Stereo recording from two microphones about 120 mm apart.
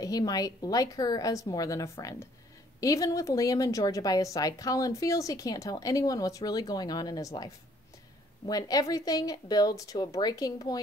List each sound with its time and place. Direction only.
0.0 s speech: 30° left (ahead or behind)